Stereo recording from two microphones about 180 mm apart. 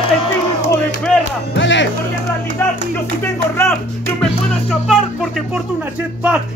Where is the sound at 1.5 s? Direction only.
90° left.